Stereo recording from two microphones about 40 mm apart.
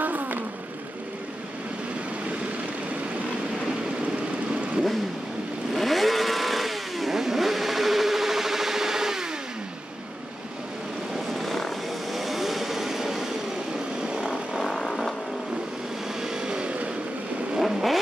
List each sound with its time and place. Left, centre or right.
0.0 s a sound: right
5.8 s vehicle: centre
11.1 s vehicle: centre
14.6 s vehicle: centre
16.2 s vehicle: centre
17.6 s vehicle: centre